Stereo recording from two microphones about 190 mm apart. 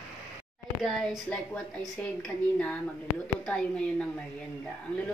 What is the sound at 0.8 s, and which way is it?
A woman's voice, centre (ahead or behind).